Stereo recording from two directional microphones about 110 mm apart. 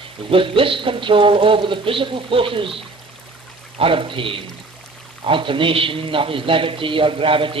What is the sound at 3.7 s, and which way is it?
A man's voice, 55° right (ahead or behind).